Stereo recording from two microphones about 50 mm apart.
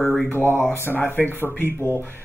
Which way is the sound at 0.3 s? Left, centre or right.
Left.